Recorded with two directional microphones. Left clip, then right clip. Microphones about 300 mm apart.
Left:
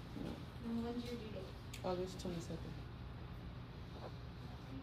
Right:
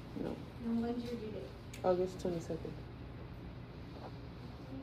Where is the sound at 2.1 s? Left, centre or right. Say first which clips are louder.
Right 8 dB; centre.